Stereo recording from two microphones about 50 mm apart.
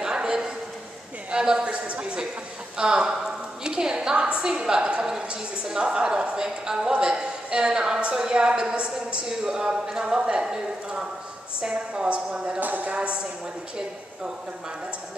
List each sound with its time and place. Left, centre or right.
0.0 s a sound: centre
1.3 s a woman's voice: centre
11.7 s a woman's voice: right
12.5 s speech: right
12.9 s a woman's voice: right